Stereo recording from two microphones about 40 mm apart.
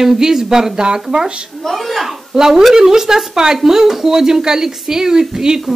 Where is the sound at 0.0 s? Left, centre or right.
Centre.